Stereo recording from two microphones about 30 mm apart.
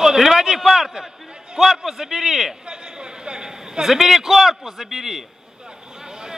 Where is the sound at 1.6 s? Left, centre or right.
Centre.